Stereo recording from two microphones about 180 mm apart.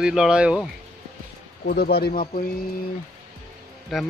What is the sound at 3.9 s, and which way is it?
Speech, centre (ahead or behind).